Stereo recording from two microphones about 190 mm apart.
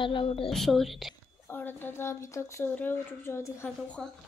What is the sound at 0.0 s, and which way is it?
Speech, 25° left (ahead or behind).